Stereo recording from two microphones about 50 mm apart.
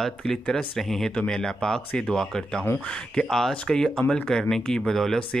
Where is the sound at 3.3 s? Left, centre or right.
Centre.